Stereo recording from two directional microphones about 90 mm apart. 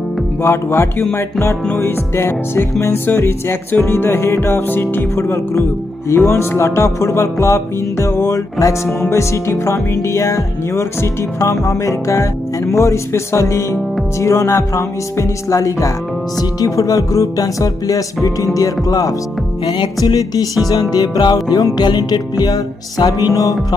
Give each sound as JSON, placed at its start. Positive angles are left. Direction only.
{"t": 0.4, "sound": "music", "side_deg": 30}
{"t": 19.7, "sound": "music", "side_deg": 50}